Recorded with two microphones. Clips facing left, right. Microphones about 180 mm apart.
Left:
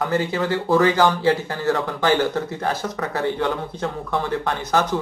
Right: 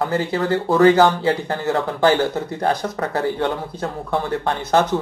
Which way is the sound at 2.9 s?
30° right (ahead or behind).